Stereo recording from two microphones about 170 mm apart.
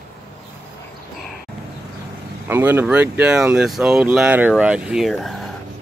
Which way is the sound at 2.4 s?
10° right (ahead or behind).